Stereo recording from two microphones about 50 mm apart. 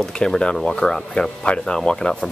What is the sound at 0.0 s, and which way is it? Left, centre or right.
Speech, centre.